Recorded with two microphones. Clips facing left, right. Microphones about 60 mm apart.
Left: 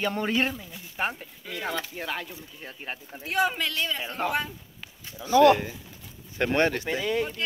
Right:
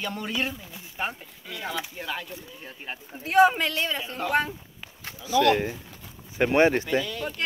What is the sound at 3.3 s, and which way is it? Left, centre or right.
Speech, right.